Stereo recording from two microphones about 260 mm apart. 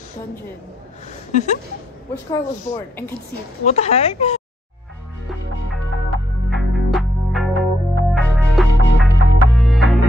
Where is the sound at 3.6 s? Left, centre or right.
Left.